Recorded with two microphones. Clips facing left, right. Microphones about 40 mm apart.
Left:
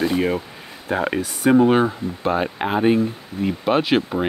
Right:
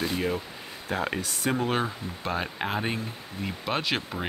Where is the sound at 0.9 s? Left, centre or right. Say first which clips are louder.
Left 7 dB; centre.